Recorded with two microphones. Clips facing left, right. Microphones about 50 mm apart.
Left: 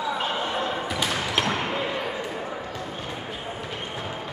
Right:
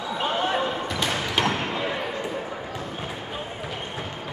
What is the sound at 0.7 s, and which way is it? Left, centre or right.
Basketball bounce, centre.